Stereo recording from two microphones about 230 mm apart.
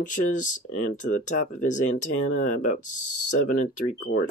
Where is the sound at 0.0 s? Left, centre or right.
Left.